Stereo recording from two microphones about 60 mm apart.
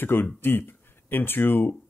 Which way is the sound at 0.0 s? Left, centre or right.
Left.